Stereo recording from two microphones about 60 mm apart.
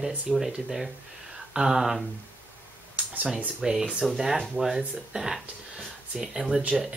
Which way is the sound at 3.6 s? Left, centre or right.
Centre.